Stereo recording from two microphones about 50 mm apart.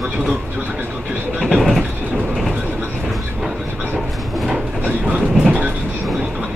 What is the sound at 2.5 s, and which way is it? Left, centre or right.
Train, right.